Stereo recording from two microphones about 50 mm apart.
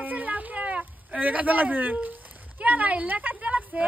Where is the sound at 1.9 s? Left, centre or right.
Right.